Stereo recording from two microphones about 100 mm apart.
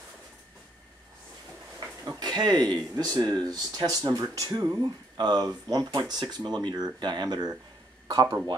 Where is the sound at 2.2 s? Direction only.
45° right (ahead or behind).